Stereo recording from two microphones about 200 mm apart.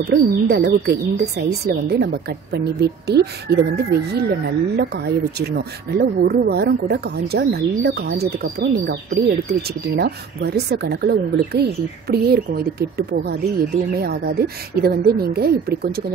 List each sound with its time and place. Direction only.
0.1 s speech: 55° right (ahead or behind)